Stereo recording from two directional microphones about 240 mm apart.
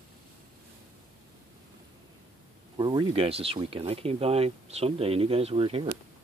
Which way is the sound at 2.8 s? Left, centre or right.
Centre.